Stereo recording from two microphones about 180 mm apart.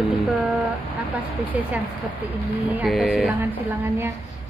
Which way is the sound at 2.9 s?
10° left (ahead or behind).